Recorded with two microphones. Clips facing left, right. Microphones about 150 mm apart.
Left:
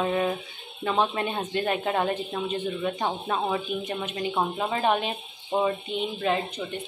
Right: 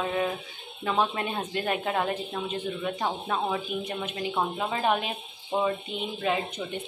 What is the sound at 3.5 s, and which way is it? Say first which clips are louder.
A woman's voice: left 2 dB; centre (ahead or behind).